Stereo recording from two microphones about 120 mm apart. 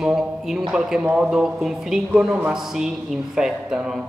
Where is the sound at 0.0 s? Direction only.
5° right (ahead or behind).